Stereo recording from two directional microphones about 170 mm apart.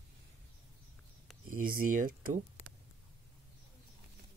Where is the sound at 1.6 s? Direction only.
55° right (ahead or behind).